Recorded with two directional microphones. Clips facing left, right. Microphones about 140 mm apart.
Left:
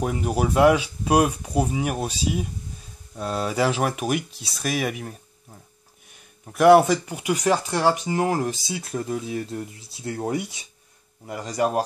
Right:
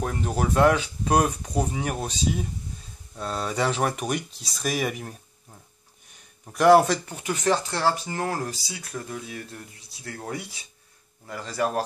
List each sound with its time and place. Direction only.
0.0 s speech: 10° left (ahead or behind)